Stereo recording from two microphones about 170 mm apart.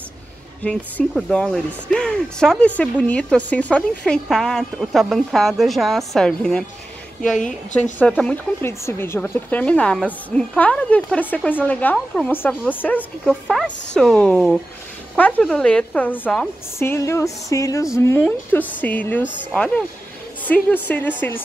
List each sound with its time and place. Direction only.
0.7 s speech: 5° left (ahead or behind)
8.0 s speech: 10° left (ahead or behind)
13.2 s speech: centre (ahead or behind)